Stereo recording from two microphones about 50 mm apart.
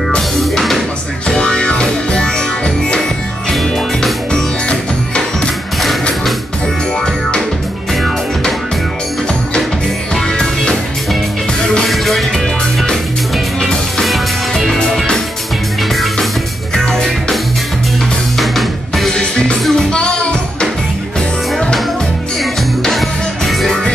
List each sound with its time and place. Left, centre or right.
0.4 s music: centre
1.3 s music: centre
4.6 s music: centre
10.1 s music: centre
11.8 s music: centre
13.6 s music: centre
18.4 s music: centre
19.1 s music: centre
22.4 s music: centre